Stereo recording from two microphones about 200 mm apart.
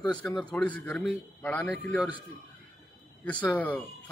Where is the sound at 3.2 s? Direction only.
5° left (ahead or behind).